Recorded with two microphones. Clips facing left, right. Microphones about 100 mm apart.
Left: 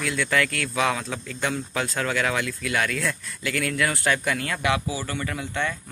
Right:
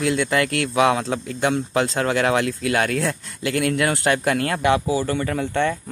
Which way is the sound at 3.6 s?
25° right (ahead or behind).